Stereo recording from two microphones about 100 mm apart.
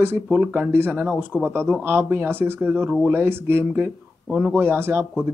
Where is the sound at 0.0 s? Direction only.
20° right (ahead or behind).